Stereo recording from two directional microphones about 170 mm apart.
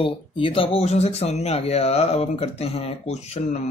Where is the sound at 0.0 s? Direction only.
30° left (ahead or behind).